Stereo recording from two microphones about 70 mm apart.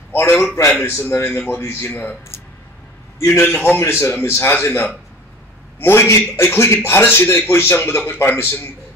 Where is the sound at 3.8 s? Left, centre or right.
Left.